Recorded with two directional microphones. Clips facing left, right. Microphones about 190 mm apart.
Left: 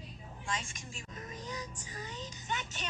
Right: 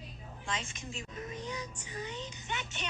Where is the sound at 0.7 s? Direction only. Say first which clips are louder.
Right 4 dB; 40° left (ahead or behind).